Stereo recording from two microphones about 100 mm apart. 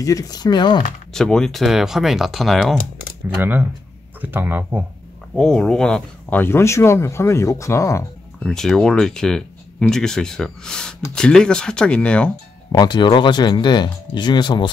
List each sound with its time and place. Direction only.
0.0 s speech: 35° left (ahead or behind)
1.1 s speech: 5° left (ahead or behind)
4.2 s speech: 20° right (ahead or behind)
5.3 s speech: 5° left (ahead or behind)
6.3 s speech: 25° left (ahead or behind)
8.5 s speech: 5° left (ahead or behind)
12.7 s speech: 45° left (ahead or behind)